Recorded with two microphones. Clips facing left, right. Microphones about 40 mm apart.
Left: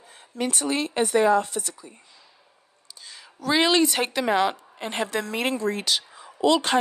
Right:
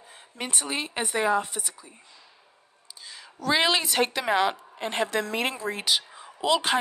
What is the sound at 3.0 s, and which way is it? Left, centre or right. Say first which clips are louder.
A woman's voice: right 1 dB; centre.